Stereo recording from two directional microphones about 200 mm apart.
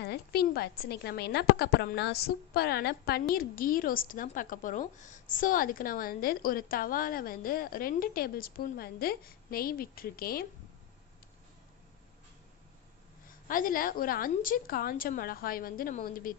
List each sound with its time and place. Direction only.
0.0 s a woman's voice: 50° left (ahead or behind)
13.5 s a woman's voice: 45° left (ahead or behind)